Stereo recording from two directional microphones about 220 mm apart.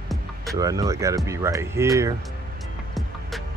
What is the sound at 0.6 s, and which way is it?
Speech, 15° right (ahead or behind).